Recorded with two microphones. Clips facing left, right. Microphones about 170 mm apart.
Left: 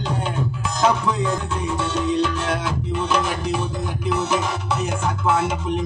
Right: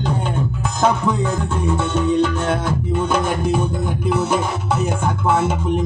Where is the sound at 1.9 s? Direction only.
50° right (ahead or behind).